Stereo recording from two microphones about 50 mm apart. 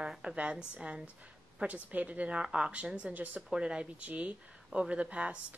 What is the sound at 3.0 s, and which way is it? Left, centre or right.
Speech, right.